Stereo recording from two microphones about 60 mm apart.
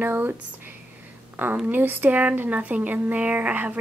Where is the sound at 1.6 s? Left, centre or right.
Right.